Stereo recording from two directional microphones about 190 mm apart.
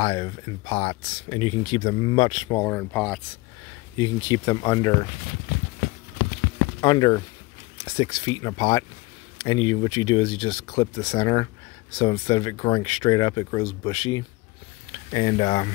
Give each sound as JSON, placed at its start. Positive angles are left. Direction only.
{"t": 0.0, "sound": "speech", "side_deg": 25}
{"t": 3.9, "sound": "speech", "side_deg": 20}
{"t": 6.8, "sound": "speech", "side_deg": 25}